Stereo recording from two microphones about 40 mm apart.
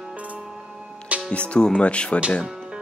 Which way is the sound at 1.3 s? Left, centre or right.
Left.